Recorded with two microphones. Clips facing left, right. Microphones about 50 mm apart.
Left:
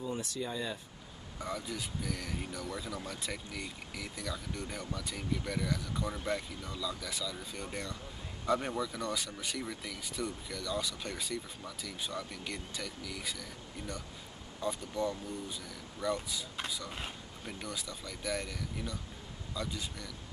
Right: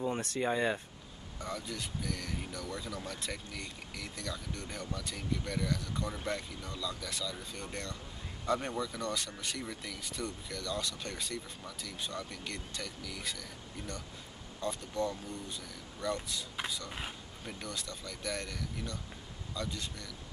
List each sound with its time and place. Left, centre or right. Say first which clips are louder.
0.0 s speech: right 4 dB; right
1.4 s speech: left 1 dB; centre